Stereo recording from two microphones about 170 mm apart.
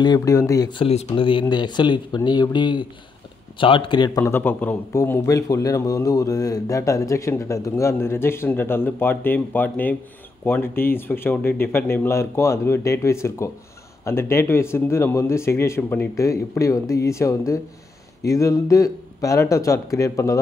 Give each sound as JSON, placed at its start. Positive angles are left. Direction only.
{"t": 0.0, "sound": "speech", "side_deg": 20}
{"t": 4.2, "sound": "a man's voice", "side_deg": 10}